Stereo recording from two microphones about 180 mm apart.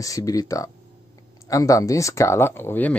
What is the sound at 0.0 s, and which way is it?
Speech, 20° left (ahead or behind).